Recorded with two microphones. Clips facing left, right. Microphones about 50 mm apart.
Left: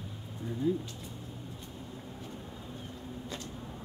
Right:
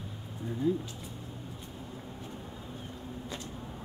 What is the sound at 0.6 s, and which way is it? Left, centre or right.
Speech, centre.